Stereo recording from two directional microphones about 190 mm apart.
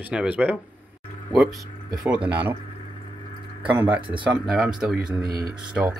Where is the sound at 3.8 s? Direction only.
25° right (ahead or behind).